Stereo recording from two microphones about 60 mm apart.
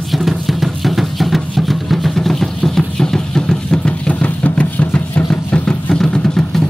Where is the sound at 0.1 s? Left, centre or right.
Centre; by 5.2 s left.